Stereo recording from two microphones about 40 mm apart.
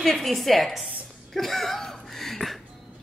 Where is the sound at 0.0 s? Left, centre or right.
Centre.